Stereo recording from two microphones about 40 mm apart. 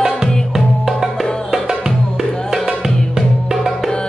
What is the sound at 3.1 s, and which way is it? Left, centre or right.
Music, centre.